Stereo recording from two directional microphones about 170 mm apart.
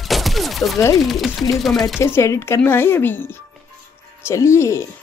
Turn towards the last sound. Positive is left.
turn(degrees=15)  # may be behind; listen again after turning